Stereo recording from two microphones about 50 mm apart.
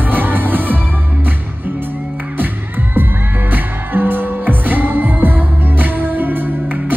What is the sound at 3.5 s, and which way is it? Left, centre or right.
Music, right.